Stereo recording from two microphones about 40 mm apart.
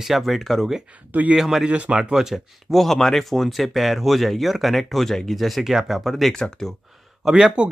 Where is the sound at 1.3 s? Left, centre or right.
Centre.